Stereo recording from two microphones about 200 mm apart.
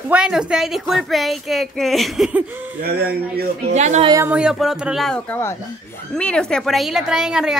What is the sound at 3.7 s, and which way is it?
Speech, 35° right (ahead or behind).